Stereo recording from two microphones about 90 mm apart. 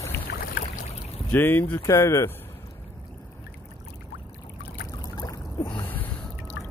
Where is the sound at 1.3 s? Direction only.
25° left (ahead or behind).